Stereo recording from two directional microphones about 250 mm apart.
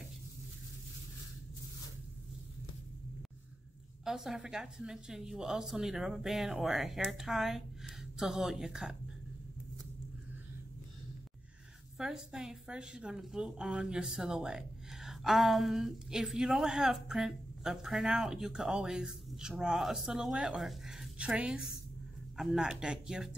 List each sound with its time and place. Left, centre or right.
4.0 s a woman's voice: centre
12.0 s a woman's voice: centre